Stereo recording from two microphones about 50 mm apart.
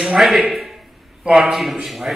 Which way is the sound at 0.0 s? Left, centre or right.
Centre.